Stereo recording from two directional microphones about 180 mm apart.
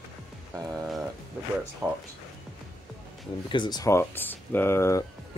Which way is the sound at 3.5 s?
25° left (ahead or behind).